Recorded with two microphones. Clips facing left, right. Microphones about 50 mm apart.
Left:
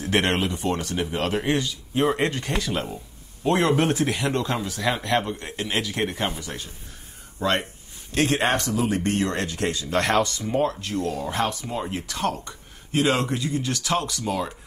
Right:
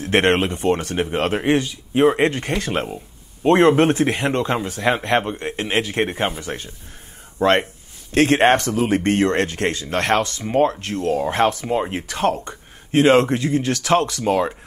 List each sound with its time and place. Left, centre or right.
0.0 s speech: right